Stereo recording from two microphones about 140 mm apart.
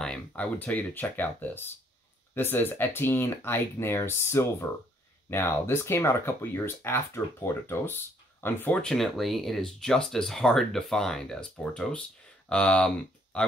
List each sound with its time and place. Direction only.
0.0 s speech: 5° left (ahead or behind)
8.8 s speech: centre (ahead or behind)